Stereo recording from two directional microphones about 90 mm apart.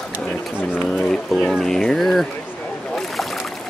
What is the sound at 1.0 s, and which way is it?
Speech, 10° left (ahead or behind).